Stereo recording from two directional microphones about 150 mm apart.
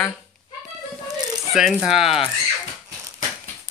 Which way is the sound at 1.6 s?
Centre (ahead or behind).